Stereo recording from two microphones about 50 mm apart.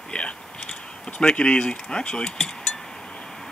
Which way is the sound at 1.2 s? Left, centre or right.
Left.